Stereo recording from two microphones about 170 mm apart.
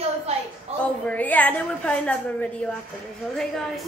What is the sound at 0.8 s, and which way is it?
A woman's voice, 10° left (ahead or behind).